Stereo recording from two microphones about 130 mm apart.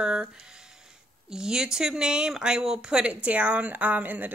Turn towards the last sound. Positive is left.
turn(degrees=-10)  # may be behind; listen again after turning